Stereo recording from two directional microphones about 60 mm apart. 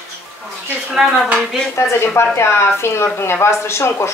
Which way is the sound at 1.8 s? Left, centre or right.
Left.